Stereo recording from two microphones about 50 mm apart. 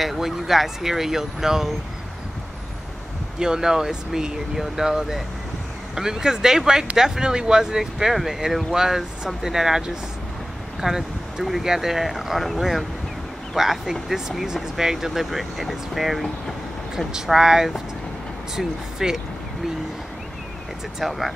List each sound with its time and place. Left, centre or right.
0.0 s speech: centre
3.3 s speech: centre
21.0 s speech: centre